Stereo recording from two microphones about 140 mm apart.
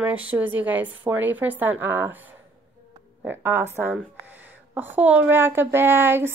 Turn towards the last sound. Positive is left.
turn(degrees=-15)  # may be behind; listen again after turning